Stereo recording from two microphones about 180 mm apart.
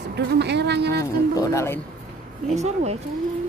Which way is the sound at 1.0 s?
15° left (ahead or behind).